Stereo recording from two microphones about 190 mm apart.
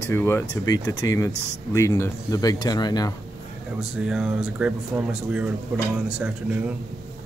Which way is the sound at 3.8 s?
5° right (ahead or behind).